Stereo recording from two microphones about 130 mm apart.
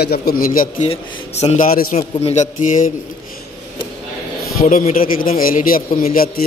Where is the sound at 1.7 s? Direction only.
90° left.